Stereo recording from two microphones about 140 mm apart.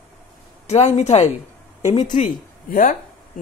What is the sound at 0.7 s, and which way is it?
Speech, 50° left (ahead or behind).